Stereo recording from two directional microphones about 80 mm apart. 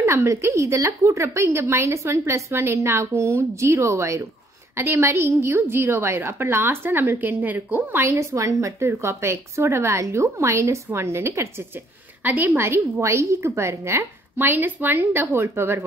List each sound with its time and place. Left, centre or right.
0.0 s a woman's voice: right
12.2 s a woman's voice: right
12.4 s a woman's voice: right